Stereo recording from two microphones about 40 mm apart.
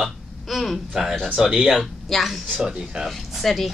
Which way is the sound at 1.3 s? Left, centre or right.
Centre.